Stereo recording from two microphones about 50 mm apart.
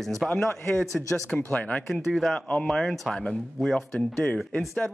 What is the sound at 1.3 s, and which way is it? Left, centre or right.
Speech, left.